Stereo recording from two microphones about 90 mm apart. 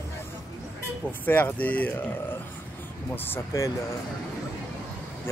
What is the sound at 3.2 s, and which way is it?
Speech, 25° left (ahead or behind).